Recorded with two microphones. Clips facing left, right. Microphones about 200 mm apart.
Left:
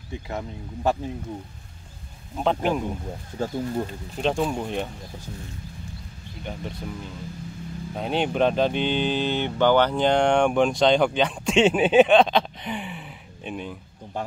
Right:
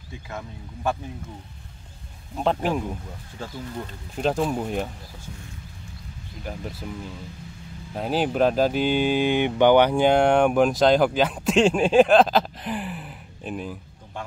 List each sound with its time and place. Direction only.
0.3 s speech: 20° left (ahead or behind)
2.3 s speech: centre (ahead or behind)
3.3 s speech: 40° left (ahead or behind)
4.2 s speech: 5° right (ahead or behind)
6.4 s speech: 5° right (ahead or behind)
7.9 s speech: 5° right (ahead or behind)